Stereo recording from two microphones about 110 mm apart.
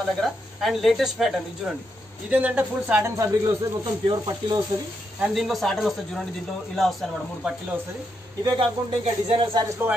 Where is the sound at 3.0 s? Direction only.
30° right (ahead or behind).